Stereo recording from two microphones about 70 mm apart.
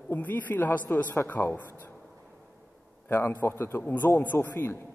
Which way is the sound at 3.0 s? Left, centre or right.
Left.